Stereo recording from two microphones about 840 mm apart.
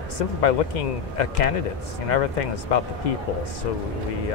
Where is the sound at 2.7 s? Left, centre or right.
Left.